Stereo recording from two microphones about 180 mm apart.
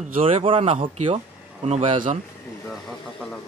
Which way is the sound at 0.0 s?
35° right (ahead or behind).